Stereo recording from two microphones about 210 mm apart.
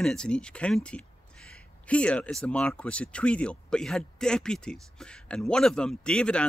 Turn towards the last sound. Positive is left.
turn(degrees=5)  # may be behind; listen again after turning